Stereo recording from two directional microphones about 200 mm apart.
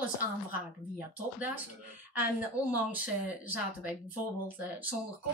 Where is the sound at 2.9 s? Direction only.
10° right (ahead or behind).